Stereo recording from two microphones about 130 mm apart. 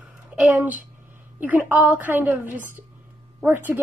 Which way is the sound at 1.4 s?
15° right (ahead or behind).